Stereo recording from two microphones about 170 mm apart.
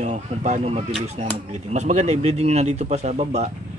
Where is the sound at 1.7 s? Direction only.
40° right (ahead or behind).